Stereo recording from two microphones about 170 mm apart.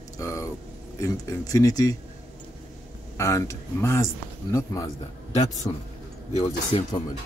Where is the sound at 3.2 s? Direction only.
15° left (ahead or behind).